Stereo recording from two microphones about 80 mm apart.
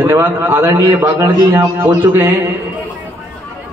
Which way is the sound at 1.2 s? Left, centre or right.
Right.